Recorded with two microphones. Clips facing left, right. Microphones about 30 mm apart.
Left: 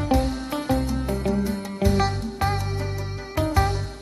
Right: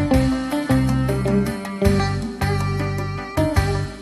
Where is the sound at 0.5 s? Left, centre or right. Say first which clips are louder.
Right 1 dB; right.